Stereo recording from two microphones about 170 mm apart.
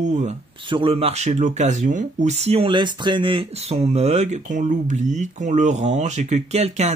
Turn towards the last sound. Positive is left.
turn(degrees=-40)  # may be behind; listen again after turning